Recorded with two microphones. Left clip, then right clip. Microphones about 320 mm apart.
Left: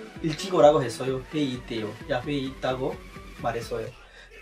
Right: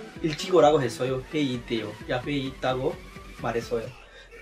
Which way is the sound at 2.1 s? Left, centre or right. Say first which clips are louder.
Even; centre.